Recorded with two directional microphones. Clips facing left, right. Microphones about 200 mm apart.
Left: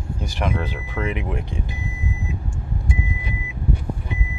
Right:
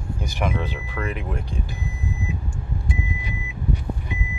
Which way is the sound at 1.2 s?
15° left (ahead or behind).